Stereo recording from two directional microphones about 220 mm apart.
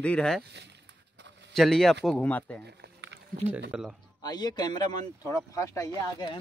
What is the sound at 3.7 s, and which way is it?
Speech, 5° right (ahead or behind).